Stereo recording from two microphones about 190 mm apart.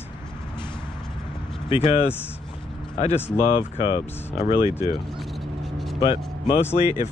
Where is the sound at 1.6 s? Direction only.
30° left (ahead or behind).